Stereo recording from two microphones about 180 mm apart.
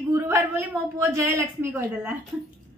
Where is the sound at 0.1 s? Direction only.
15° right (ahead or behind).